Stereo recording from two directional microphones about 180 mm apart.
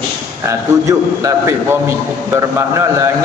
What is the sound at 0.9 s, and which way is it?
A man's voice, 20° right (ahead or behind).